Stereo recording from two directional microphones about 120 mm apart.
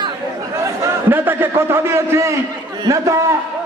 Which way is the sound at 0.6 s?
15° right (ahead or behind).